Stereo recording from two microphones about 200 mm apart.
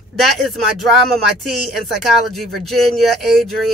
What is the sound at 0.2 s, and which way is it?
Speech, centre (ahead or behind).